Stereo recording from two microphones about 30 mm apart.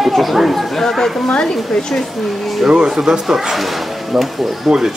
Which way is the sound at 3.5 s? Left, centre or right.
Centre.